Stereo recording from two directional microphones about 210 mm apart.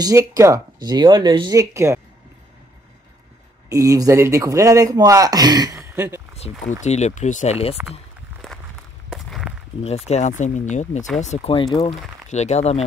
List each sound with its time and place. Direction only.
0.0 s speech: 15° right (ahead or behind)
3.6 s speech: 15° right (ahead or behind)
6.8 s speech: 35° left (ahead or behind)
7.8 s speech: 10° right (ahead or behind)
8.4 s a sound: centre (ahead or behind)
9.1 s walk: centre (ahead or behind)
9.8 s speech: 30° left (ahead or behind)